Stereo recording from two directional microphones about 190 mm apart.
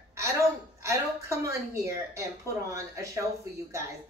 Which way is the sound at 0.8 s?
15° right (ahead or behind).